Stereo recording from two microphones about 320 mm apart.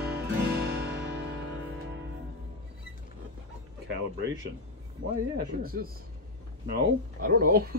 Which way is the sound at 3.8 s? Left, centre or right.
Right.